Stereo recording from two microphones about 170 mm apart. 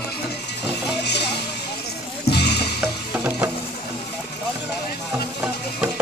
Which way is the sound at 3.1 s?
10° right (ahead or behind).